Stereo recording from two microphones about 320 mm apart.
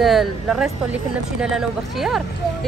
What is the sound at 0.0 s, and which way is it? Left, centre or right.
A woman's voice, centre.